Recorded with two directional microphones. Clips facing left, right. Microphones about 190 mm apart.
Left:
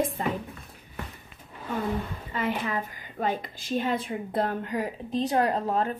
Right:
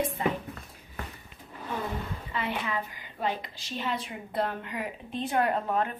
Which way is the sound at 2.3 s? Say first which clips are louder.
Left 3 dB; 40° left (ahead or behind).